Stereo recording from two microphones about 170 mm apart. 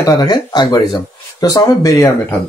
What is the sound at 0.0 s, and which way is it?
Speech, 20° left (ahead or behind).